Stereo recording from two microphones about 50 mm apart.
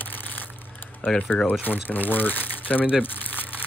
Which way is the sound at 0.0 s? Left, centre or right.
Left.